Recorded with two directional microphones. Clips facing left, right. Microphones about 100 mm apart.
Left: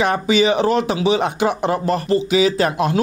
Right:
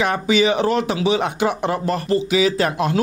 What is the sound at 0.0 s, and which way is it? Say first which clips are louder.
Speech: left 1 dB; 30° left (ahead or behind).